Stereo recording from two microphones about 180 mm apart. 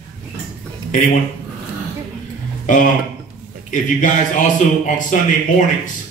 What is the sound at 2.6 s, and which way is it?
A man's voice, 45° left (ahead or behind).